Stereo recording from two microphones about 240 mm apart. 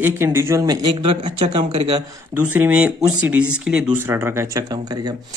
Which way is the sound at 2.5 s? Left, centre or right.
Centre.